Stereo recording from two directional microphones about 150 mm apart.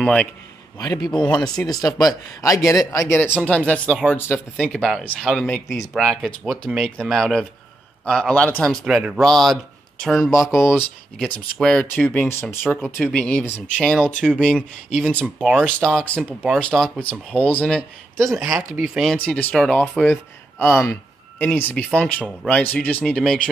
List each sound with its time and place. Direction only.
0.0 s a man's voice: 5° left (ahead or behind)
0.7 s speech: 25° left (ahead or behind); by 8.7 s 5° left (ahead or behind)
8.8 s speech: 5° right (ahead or behind)
10.3 s speech: 15° left (ahead or behind)
11.1 s speech: 5° left (ahead or behind)
19.8 s speech: 15° left (ahead or behind)